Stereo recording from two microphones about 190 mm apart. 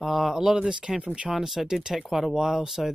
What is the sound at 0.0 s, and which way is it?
Speech, centre (ahead or behind).